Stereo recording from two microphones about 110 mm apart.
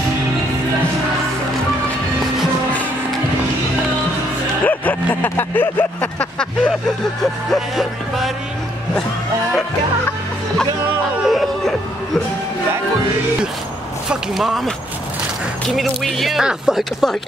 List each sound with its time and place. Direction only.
4.6 s vehicle: 15° left (ahead or behind)
7.2 s speech: centre (ahead or behind)
11.2 s a sound: centre (ahead or behind)
14.0 s speech: centre (ahead or behind)
15.7 s speech: centre (ahead or behind)